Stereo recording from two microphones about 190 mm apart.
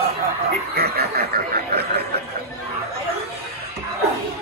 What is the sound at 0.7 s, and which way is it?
Snicker, 55° right (ahead or behind).